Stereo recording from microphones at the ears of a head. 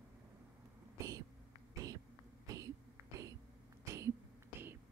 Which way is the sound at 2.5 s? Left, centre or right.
Right.